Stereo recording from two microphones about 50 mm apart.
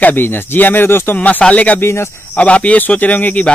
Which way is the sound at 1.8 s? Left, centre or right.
Left.